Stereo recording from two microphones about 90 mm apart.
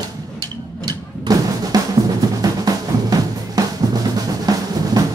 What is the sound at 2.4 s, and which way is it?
Drum, 45° right (ahead or behind).